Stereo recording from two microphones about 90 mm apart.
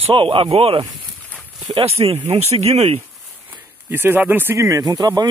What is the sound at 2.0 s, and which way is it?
Speech, 60° right (ahead or behind).